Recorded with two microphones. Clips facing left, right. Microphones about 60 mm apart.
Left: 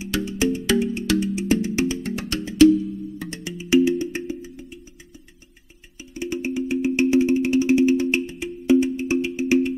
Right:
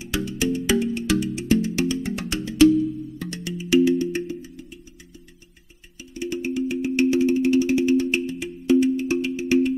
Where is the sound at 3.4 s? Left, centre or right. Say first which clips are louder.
Even; left.